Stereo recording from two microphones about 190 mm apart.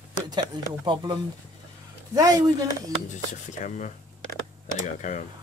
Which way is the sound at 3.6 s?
40° left (ahead or behind).